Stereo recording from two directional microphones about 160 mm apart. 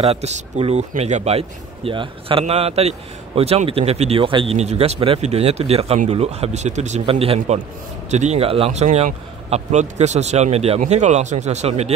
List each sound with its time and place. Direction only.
0.0 s a man's voice: 40° right (ahead or behind)